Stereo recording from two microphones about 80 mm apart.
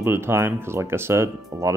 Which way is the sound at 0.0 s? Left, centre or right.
Right.